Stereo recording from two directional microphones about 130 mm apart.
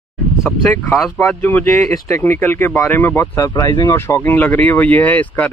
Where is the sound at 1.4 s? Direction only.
15° left (ahead or behind).